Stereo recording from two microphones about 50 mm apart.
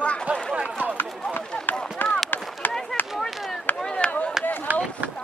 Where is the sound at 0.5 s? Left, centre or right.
Right.